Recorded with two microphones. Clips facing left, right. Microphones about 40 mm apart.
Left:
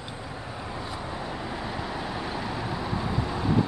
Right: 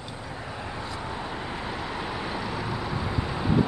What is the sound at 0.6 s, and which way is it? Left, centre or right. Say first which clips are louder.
Vehicle: even; centre.